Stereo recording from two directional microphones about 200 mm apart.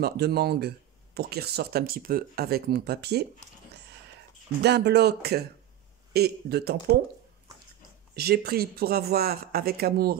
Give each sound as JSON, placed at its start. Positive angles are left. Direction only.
{"t": 0.0, "sound": "speech", "side_deg": -50}
{"t": 4.6, "sound": "speech", "side_deg": -55}
{"t": 8.2, "sound": "speech", "side_deg": -50}